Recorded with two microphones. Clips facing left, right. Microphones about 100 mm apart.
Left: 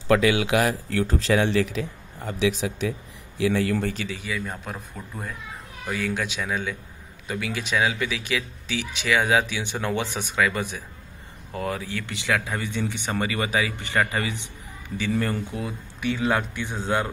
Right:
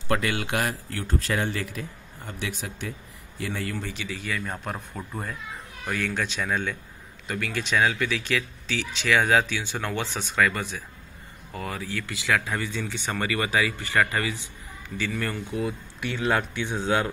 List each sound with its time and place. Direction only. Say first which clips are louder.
0.2 s a man's voice: left 6 dB; 90° left
4.1 s speech: left 1 dB; 15° left (ahead or behind)
5.0 s speech: right 2 dB; 5° right (ahead or behind)
5.9 s speech: left 1 dB; 10° left (ahead or behind)
11.5 s speech: left 3 dB; 25° left (ahead or behind)
15.5 s speech: right 3 dB; 35° left (ahead or behind)
16.2 s speech: right 1 dB; 5° left (ahead or behind)